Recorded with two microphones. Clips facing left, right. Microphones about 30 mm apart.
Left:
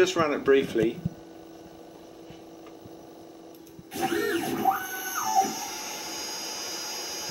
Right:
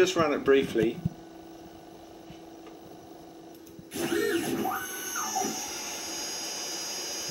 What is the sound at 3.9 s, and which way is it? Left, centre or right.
Printer, centre.